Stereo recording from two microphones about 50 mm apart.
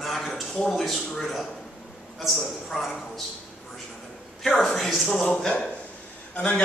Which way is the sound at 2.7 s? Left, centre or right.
Centre.